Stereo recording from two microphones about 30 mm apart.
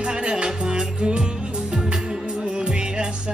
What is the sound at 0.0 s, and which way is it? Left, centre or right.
Music, right.